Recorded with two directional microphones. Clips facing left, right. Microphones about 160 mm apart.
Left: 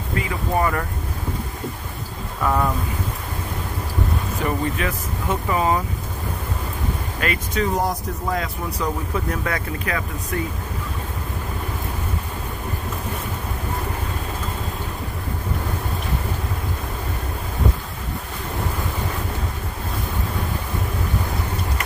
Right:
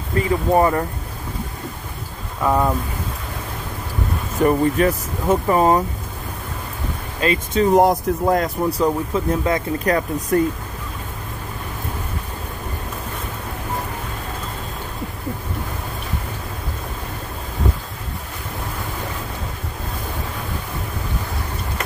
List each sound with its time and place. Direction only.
0.2 s speech: 30° right (ahead or behind)
2.4 s speech: 20° right (ahead or behind)
4.5 s speech: 40° right (ahead or behind)
7.2 s speech: 25° right (ahead or behind)
7.7 s speech: 55° right (ahead or behind)
8.6 s speech: 30° right (ahead or behind)
9.8 s speech: 40° right (ahead or behind)